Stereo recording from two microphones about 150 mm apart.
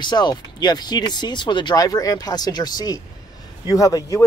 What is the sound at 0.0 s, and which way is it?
Speech, 30° left (ahead or behind).